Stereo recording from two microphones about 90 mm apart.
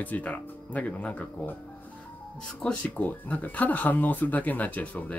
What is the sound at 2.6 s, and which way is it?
Speech, 15° left (ahead or behind).